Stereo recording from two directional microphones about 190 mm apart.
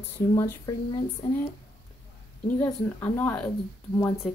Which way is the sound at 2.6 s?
15° left (ahead or behind).